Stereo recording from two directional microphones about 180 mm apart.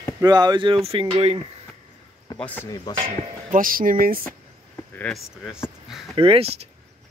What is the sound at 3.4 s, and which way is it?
Speech, 50° right (ahead or behind).